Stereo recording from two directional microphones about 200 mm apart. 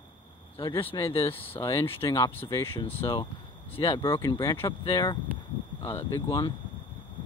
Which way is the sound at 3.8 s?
25° left (ahead or behind).